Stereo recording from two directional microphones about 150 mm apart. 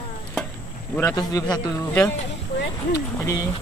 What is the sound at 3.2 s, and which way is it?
Speech, 20° left (ahead or behind).